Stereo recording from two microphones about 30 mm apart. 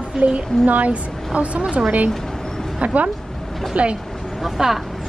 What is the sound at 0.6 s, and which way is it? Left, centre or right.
Speech, right.